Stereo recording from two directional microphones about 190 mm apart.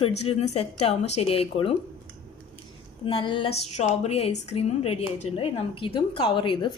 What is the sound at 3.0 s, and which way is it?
A woman's voice, 25° left (ahead or behind).